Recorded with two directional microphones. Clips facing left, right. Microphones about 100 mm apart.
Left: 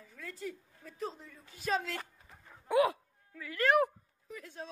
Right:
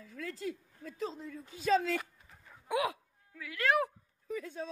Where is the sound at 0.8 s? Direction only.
90° right.